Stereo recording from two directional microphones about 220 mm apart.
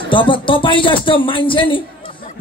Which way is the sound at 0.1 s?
20° left (ahead or behind).